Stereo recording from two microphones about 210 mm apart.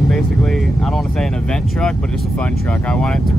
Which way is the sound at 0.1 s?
Centre (ahead or behind).